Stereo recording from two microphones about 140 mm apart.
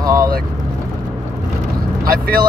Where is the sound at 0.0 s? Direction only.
25° right (ahead or behind).